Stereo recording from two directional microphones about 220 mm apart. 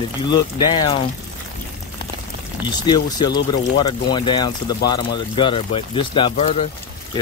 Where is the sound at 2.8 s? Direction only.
20° left (ahead or behind).